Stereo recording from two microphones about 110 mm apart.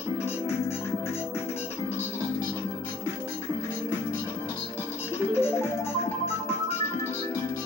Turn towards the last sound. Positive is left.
turn(degrees=20)  # may be behind; listen again after turning